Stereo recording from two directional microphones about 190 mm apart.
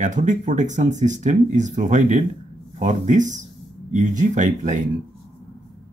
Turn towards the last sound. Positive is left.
turn(degrees=-40)  # may be behind; listen again after turning